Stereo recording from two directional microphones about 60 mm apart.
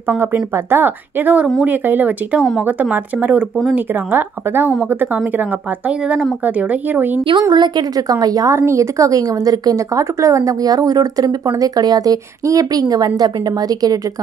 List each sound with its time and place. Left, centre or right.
0.2 s speech: right
7.3 s a woman's voice: right
8.5 s a woman's voice: right